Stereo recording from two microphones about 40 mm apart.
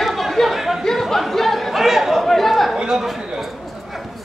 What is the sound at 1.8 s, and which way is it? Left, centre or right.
Chatter, centre.